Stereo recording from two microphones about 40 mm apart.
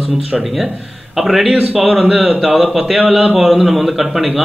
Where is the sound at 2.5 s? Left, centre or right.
Centre.